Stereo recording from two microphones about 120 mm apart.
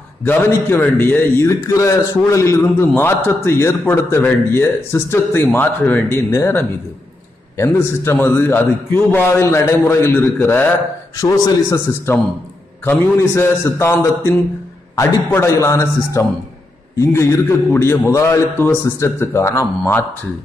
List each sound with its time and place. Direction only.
0.2 s a man's voice: 20° left (ahead or behind)
11.1 s a man's voice: 25° left (ahead or behind)